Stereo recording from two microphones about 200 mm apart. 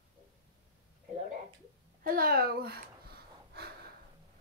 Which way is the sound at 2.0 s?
50° right (ahead or behind).